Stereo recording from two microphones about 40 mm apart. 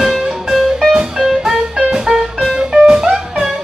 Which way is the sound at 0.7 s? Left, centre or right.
Centre.